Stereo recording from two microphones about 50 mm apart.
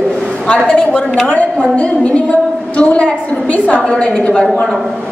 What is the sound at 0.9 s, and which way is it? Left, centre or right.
A woman's voice, left.